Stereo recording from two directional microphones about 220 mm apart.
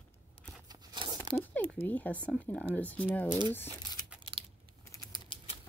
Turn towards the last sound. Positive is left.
turn(degrees=15)  # may be behind; listen again after turning